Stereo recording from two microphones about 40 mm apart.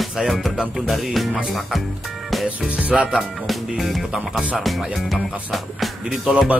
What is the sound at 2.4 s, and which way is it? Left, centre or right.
Music, right.